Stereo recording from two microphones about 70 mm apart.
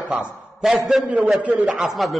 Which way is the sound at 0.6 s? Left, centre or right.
Centre.